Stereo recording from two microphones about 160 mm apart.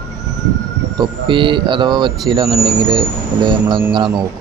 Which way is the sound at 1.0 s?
30° right (ahead or behind).